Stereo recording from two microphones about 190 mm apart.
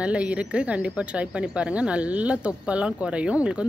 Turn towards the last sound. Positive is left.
turn(degrees=-5)  # may be behind; listen again after turning